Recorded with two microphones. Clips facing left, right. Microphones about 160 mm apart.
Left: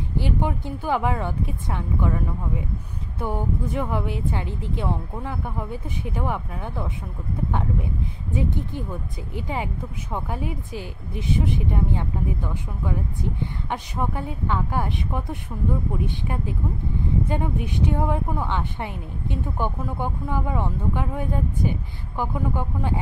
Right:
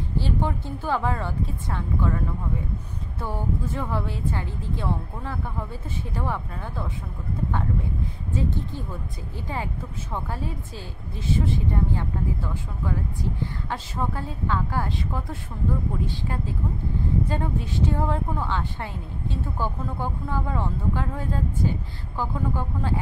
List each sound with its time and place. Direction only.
0.2 s a woman's voice: 15° left (ahead or behind)